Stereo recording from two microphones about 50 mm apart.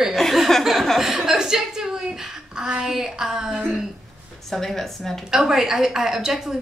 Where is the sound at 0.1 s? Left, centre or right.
Centre.